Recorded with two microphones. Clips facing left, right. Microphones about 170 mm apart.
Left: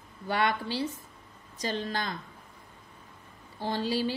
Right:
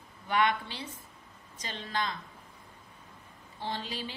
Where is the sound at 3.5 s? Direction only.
40° left (ahead or behind).